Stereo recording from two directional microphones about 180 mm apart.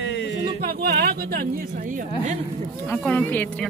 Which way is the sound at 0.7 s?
60° right (ahead or behind).